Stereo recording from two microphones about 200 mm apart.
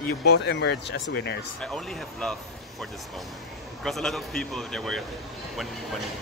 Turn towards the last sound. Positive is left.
turn(degrees=0)  # may be behind; listen again after turning